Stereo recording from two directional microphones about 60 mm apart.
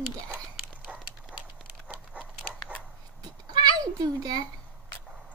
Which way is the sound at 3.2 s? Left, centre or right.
Right.